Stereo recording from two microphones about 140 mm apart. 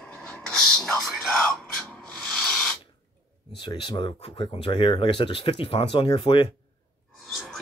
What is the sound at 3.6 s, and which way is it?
Speech, 35° left (ahead or behind).